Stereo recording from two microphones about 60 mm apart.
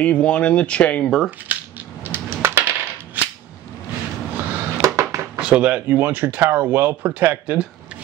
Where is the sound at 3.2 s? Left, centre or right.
Right.